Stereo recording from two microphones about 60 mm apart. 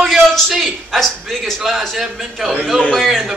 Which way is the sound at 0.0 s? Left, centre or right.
Centre.